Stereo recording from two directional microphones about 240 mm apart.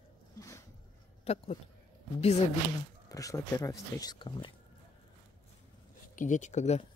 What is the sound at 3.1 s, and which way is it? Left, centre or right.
Speech, centre.